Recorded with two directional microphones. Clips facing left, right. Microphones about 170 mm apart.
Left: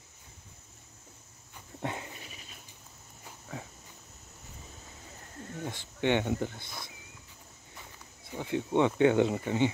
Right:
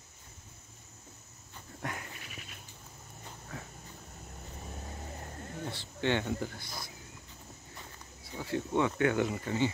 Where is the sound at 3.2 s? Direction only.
10° left (ahead or behind).